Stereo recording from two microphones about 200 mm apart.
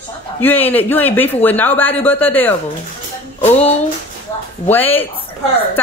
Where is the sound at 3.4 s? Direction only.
30° left (ahead or behind).